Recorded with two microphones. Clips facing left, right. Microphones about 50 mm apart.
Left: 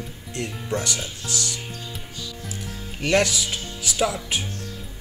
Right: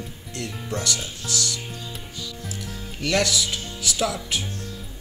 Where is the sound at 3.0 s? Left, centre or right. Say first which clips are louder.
Left 2 dB; centre.